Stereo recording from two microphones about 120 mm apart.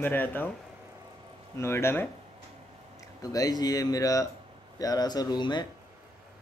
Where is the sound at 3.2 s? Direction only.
30° left (ahead or behind).